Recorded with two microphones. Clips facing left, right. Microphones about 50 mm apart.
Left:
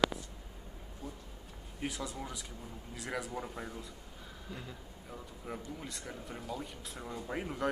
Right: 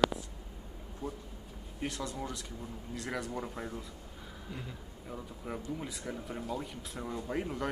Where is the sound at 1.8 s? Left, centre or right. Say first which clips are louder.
Right 2 dB; centre.